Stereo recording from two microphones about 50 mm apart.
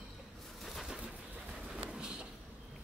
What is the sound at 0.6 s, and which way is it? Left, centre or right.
Pigeon, centre.